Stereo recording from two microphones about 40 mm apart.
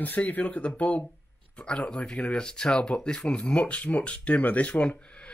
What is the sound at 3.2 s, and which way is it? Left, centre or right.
Speech, left.